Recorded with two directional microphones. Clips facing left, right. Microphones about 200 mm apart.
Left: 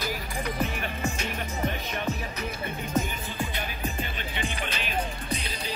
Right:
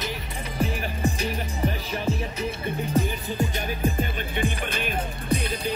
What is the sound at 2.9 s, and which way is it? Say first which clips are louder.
Music: right 3 dB; 35° right (ahead or behind).